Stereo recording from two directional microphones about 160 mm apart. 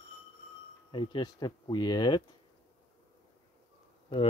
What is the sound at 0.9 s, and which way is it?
Speech, 30° left (ahead or behind).